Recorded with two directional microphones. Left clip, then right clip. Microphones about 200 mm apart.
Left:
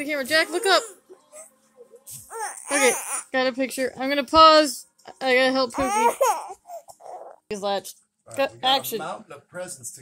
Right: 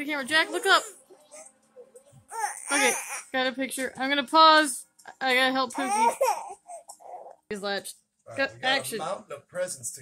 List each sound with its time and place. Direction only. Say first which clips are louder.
0.0 s speech: left 3 dB; 15° left (ahead or behind)
2.2 s music: right 1 dB; 35° left (ahead or behind)
2.9 s speech: left 4 dB; 45° left (ahead or behind)
3.3 s speech: left 5 dB; 15° left (ahead or behind)
5.7 s speech: left 3 dB; 45° left (ahead or behind)
7.4 s speech: left 5 dB; 15° left (ahead or behind)
9.0 s speech: even; 10° right (ahead or behind)